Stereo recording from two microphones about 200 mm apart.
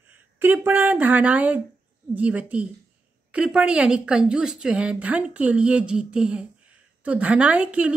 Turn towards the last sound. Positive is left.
turn(degrees=-5)  # may be behind; listen again after turning